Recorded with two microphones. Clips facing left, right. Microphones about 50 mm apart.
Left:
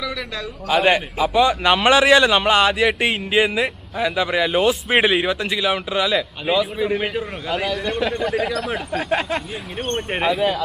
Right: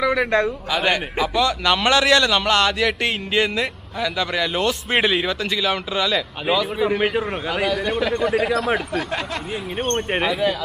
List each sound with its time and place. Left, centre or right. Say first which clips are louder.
0.0 s a man's voice: right 9 dB; right
0.7 s a man's voice: left 4 dB; left; by 7.0 s centre
7.0 s a man's voice: right 3 dB; centre
8.3 s speech: right 2 dB; centre
8.9 s speech: left 3 dB; left
10.2 s a man's voice: left 3 dB; centre